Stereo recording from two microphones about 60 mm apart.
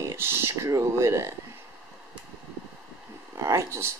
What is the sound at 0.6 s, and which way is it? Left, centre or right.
Speech, right.